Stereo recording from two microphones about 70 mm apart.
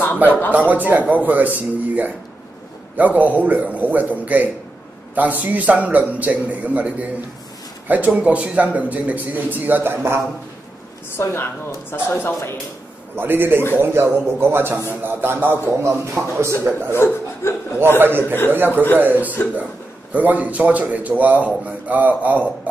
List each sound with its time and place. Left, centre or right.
0.5 s a man's voice: right
11.1 s a man's voice: left
13.1 s a man's voice: right
16.9 s speech: left
17.9 s a man's voice: right